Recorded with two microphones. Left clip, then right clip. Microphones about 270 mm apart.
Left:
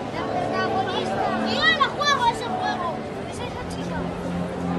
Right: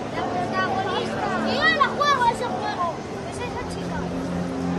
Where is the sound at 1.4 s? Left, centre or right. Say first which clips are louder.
Right 1 dB; right.